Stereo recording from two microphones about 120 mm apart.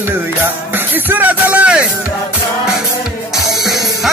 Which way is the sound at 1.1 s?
15° right (ahead or behind).